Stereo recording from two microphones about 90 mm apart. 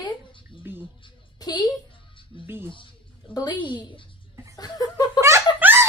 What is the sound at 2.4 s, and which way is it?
Speech, 25° right (ahead or behind).